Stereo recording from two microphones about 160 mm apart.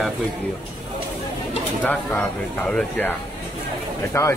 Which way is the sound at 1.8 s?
10° left (ahead or behind).